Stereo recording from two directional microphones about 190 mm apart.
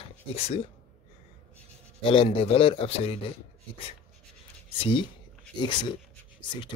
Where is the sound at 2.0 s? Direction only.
30° left (ahead or behind).